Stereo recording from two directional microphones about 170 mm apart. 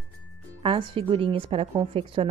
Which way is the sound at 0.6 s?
30° right (ahead or behind).